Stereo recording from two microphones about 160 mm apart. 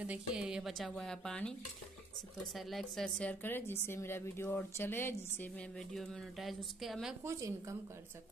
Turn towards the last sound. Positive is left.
turn(degrees=-20)  # may be behind; listen again after turning